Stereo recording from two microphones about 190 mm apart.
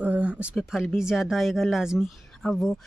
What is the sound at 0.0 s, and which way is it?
Speech, 10° right (ahead or behind).